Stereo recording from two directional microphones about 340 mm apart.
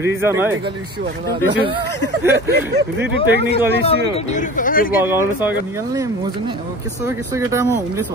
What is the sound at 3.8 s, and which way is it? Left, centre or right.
Speech, centre.